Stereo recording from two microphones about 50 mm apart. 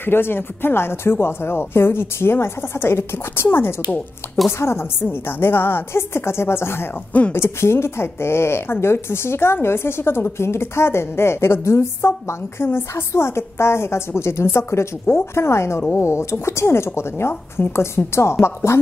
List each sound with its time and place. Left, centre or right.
0.0 s a woman's voice: left
5.0 s a woman's voice: left